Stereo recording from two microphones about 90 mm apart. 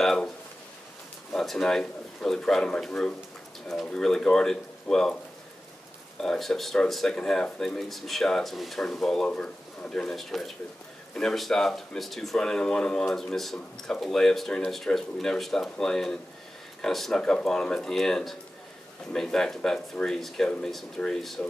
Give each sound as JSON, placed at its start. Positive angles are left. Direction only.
{"t": 0.0, "sound": "a sound", "side_deg": 5}
{"t": 1.3, "sound": "speech", "side_deg": 5}
{"t": 6.2, "sound": "speech", "side_deg": 5}